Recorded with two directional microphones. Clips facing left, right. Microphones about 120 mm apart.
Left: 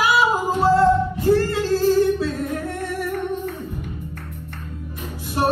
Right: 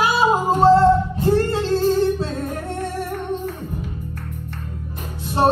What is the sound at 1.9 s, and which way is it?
Humming, 25° right (ahead or behind).